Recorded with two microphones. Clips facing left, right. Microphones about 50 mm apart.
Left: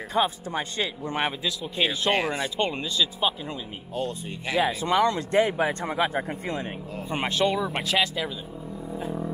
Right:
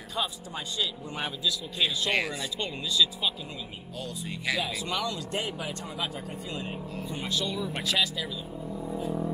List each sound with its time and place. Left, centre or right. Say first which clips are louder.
0.1 s speech: left 8 dB; left
8.9 s didgeridoo: left 1 dB; left